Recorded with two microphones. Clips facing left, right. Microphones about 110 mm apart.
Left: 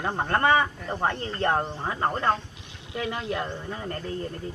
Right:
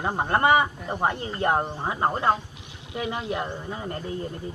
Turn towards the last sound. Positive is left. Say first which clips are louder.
# right 1 dB
turn(degrees=-20)  # may be behind; listen again after turning